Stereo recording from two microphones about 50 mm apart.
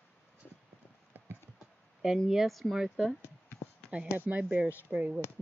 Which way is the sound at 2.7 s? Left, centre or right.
Centre.